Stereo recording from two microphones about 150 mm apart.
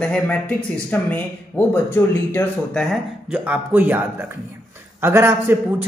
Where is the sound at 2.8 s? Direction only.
5° right (ahead or behind).